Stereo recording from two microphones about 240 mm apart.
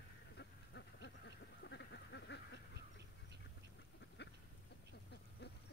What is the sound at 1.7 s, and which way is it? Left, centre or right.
Duck, left.